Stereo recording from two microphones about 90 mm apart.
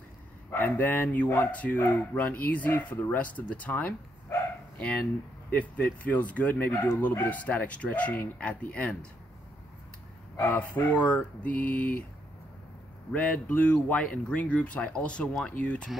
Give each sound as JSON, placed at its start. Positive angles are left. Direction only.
{"t": 0.5, "sound": "speech", "side_deg": 20}
{"t": 5.5, "sound": "speech", "side_deg": 20}
{"t": 10.3, "sound": "speech", "side_deg": 25}
{"t": 13.1, "sound": "speech", "side_deg": 15}